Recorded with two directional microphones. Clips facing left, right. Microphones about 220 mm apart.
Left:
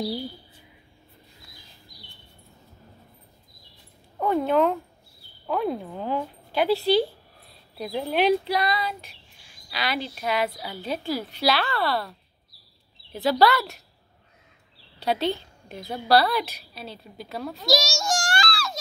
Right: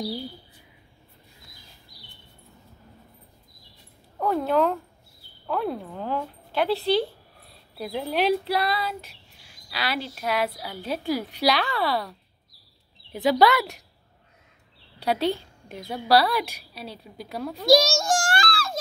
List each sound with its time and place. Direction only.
4.2 s a woman's voice: centre (ahead or behind)
11.6 s speech: centre (ahead or behind)
13.1 s a woman's voice: 15° right (ahead or behind)
15.0 s a woman's voice: 10° right (ahead or behind)
17.6 s a sound: 55° right (ahead or behind)